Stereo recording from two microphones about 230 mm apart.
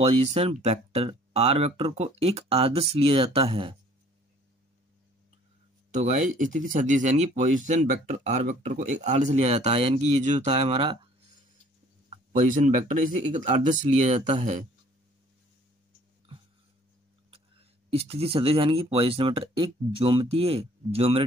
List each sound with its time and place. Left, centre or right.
0.0 s speech: right
5.9 s speech: right
12.3 s speech: right
17.8 s speech: right